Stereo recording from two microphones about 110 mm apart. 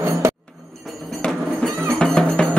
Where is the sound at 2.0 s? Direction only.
5° left (ahead or behind).